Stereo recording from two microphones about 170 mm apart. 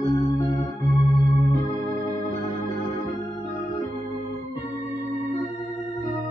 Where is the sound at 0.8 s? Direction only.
20° left (ahead or behind).